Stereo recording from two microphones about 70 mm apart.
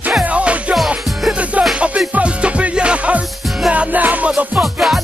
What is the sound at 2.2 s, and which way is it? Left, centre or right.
Music, centre.